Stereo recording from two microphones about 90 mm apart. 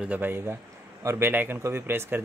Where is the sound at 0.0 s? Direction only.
20° right (ahead or behind).